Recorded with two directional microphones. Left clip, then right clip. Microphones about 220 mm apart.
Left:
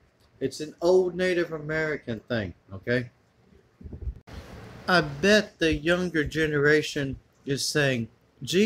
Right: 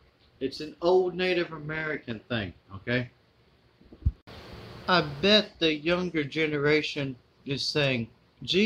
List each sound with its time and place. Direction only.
0.4 s speech: 25° left (ahead or behind)
4.8 s speech: 15° left (ahead or behind)